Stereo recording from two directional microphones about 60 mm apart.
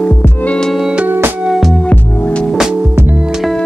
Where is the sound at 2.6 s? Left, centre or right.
Centre.